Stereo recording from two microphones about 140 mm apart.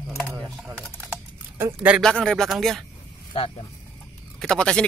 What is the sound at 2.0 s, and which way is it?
Speech, 5° left (ahead or behind).